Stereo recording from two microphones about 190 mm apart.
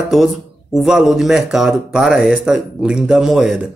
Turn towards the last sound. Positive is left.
turn(degrees=0)  # may be behind; listen again after turning